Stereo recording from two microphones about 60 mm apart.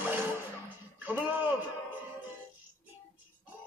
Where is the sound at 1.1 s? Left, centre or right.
Right.